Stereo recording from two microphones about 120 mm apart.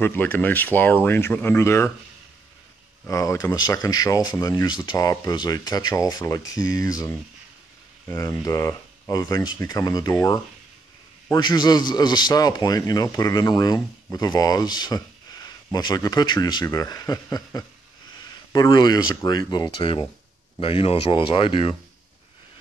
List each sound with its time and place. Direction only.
0.0 s speech: 15° left (ahead or behind)
3.1 s speech: 30° left (ahead or behind)
8.1 s a man's voice: 25° left (ahead or behind)
11.3 s a man's voice: 40° left (ahead or behind)